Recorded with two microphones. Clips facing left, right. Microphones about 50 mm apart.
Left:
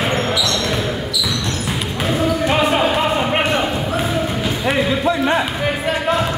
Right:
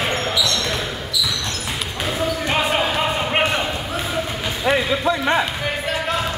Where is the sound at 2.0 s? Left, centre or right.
Centre.